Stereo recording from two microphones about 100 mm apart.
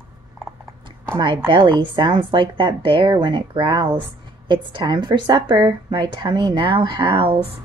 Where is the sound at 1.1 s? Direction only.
55° right (ahead or behind).